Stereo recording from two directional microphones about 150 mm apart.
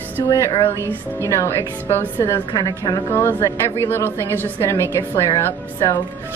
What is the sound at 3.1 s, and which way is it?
A woman's voice, 15° left (ahead or behind).